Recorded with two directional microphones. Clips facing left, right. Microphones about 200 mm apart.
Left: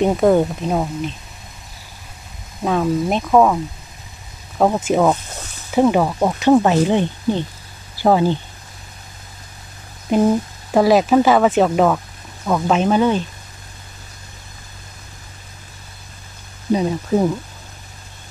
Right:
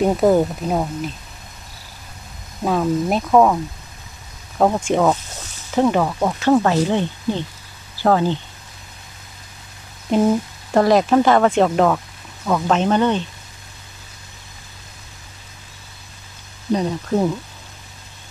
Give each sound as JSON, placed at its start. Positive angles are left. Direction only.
{"t": 0.0, "sound": "speech", "side_deg": -5}
{"t": 2.6, "sound": "speech", "side_deg": 0}
{"t": 4.6, "sound": "speech", "side_deg": 5}
{"t": 5.7, "sound": "sizzle", "side_deg": 10}
{"t": 10.1, "sound": "speech", "side_deg": 5}
{"t": 12.4, "sound": "sizzle", "side_deg": 10}
{"t": 16.7, "sound": "speech", "side_deg": 5}